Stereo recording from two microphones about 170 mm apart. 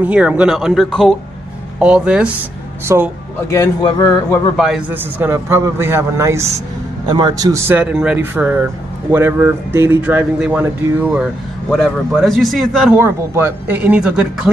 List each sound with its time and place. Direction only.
0.0 s a man's voice: 5° right (ahead or behind)
2.9 s a man's voice: 15° right (ahead or behind)
3.4 s speech: 20° left (ahead or behind)
4.3 s a man's voice: centre (ahead or behind)
13.0 s a man's voice: 15° right (ahead or behind)